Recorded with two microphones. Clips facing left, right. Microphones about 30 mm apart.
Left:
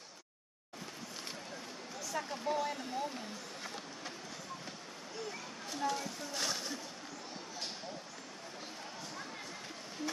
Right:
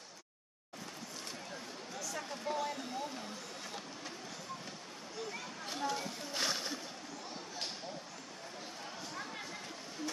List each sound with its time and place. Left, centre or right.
2.1 s speech: centre
5.8 s speech: centre